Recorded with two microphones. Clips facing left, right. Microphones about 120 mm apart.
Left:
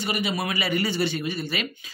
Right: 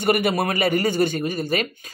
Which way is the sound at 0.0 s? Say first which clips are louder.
Right 7 dB; 55° right (ahead or behind).